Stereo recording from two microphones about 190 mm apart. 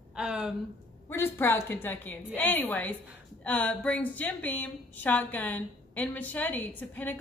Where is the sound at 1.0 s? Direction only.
10° left (ahead or behind).